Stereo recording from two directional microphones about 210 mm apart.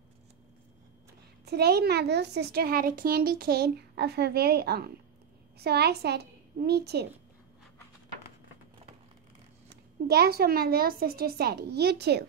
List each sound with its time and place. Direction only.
1.4 s a woman's voice: 50° right (ahead or behind)
9.7 s a woman's voice: 50° right (ahead or behind)